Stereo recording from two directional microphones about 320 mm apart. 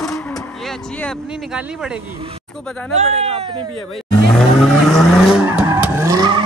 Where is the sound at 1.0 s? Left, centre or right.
Centre.